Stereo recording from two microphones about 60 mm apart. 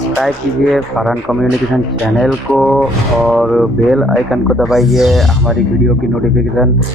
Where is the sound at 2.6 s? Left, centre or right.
Centre.